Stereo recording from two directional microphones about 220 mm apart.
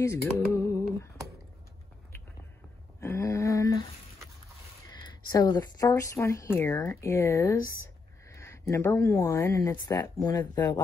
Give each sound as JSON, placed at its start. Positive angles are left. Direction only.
{"t": 0.0, "sound": "music", "side_deg": 10}
{"t": 3.0, "sound": "a sound", "side_deg": 10}
{"t": 5.3, "sound": "speech", "side_deg": 15}